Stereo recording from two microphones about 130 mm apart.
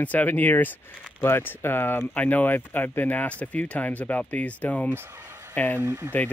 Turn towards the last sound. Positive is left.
turn(degrees=-20)  # may be behind; listen again after turning